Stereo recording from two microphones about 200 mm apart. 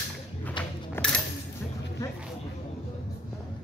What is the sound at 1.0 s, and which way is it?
Music, 10° left (ahead or behind).